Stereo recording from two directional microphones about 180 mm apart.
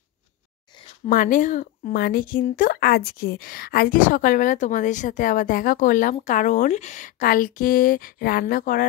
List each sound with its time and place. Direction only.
1.0 s speech: 45° left (ahead or behind)